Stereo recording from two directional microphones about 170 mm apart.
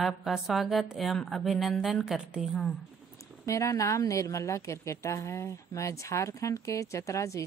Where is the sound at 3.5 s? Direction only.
20° left (ahead or behind).